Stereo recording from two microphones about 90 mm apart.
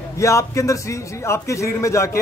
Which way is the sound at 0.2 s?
35° left (ahead or behind).